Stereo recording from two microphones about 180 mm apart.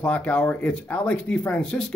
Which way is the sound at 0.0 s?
5° left (ahead or behind).